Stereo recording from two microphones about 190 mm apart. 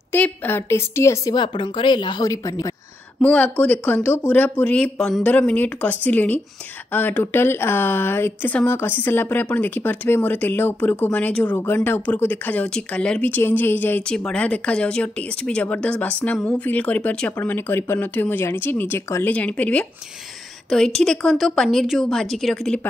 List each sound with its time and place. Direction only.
0.1 s a woman's voice: 10° left (ahead or behind)